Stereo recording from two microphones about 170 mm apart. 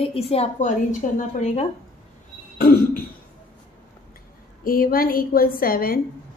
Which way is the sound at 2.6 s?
65° left (ahead or behind).